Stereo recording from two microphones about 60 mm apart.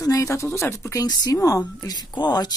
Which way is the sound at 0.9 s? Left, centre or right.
Left.